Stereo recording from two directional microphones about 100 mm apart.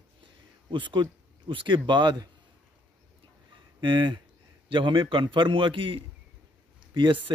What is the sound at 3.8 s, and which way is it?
Speech, 50° right (ahead or behind).